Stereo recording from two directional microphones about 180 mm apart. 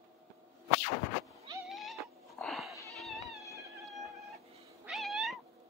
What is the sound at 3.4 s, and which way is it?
Music, 15° right (ahead or behind).